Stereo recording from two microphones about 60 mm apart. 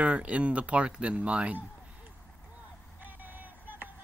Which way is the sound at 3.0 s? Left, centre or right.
Right.